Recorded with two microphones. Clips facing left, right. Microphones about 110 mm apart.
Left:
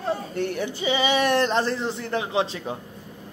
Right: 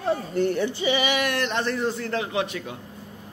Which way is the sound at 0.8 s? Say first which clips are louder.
Left 1 dB; 20° left (ahead or behind).